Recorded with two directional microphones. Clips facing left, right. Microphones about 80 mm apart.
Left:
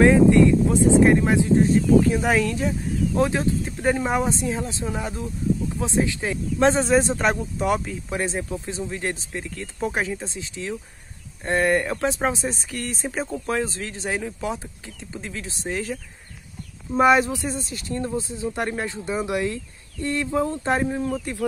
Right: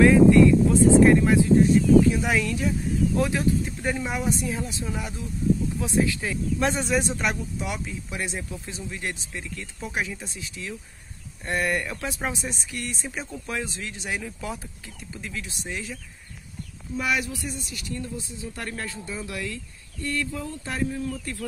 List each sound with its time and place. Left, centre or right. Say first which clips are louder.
0.0 s speech: even; left
1.7 s speech: even; left
20.2 s speech: left 11 dB; left